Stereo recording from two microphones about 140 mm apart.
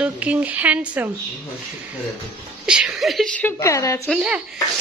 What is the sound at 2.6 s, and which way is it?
Speech, 5° right (ahead or behind).